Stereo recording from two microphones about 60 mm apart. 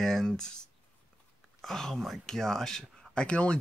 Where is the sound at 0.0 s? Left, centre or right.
Centre.